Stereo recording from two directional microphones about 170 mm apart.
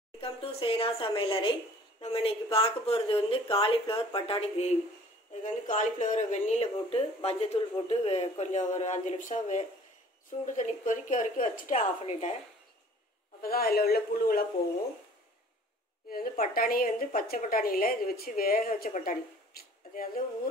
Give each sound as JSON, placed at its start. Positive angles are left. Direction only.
{"t": 0.2, "sound": "a woman's voice", "side_deg": 35}
{"t": 5.4, "sound": "speech", "side_deg": 50}
{"t": 13.4, "sound": "a woman's voice", "side_deg": 60}
{"t": 16.1, "sound": "a woman's voice", "side_deg": 60}